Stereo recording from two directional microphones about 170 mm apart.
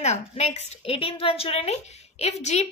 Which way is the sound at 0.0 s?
40° left (ahead or behind).